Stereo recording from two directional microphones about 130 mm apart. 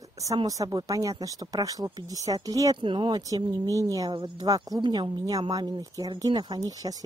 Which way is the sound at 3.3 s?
25° right (ahead or behind).